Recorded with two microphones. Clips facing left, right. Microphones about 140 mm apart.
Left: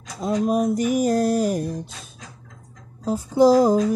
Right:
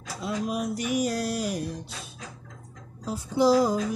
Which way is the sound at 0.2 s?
45° left (ahead or behind).